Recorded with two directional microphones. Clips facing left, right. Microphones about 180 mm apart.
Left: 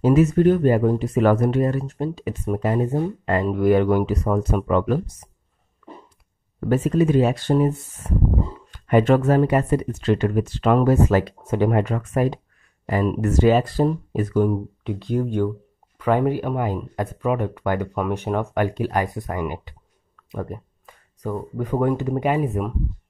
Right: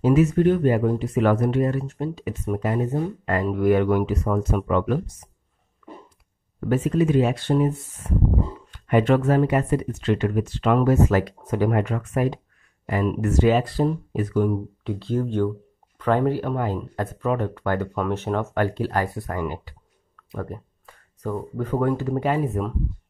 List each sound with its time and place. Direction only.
0.0 s speech: 40° left (ahead or behind)
5.8 s dog: 35° left (ahead or behind)
6.7 s speech: 35° left (ahead or behind)
11.8 s speech: 35° left (ahead or behind)
14.8 s speech: 15° left (ahead or behind)